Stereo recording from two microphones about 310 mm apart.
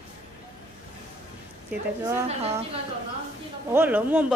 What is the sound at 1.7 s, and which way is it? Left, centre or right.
Speech, centre.